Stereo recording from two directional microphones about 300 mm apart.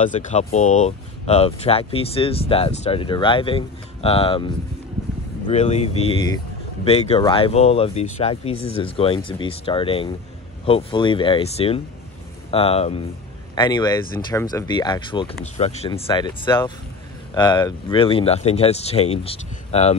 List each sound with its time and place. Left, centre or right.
0.0 s speech: left
8.5 s speech: left
8.8 s speech: centre